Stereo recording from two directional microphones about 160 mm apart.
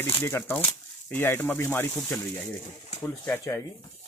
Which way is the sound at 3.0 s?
15° left (ahead or behind).